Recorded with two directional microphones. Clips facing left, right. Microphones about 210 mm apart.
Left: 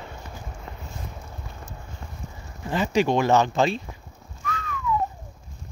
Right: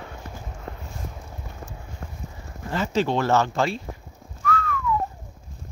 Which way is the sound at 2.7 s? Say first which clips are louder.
Left 2 dB; 15° left (ahead or behind).